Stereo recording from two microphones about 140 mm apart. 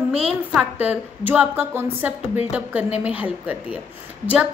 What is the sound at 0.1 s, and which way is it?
A woman's voice, 5° right (ahead or behind).